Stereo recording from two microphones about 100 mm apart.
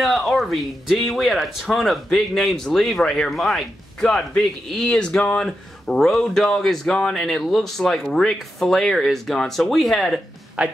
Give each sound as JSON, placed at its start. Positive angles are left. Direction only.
{"t": 0.0, "sound": "speech", "side_deg": 0}
{"t": 10.6, "sound": "speech", "side_deg": -10}